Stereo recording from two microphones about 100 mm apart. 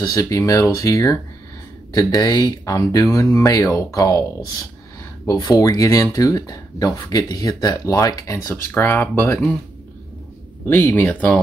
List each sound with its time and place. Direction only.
0.0 s speech: 35° left (ahead or behind)
2.6 s speech: 35° left (ahead or behind)
8.7 s speech: 20° left (ahead or behind)
10.7 s speech: 20° left (ahead or behind)